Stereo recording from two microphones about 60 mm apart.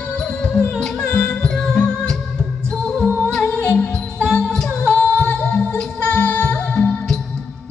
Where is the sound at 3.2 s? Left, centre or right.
Centre.